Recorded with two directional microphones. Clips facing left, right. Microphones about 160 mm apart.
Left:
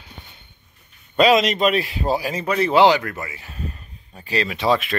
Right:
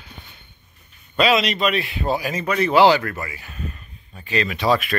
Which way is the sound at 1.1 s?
45° left (ahead or behind).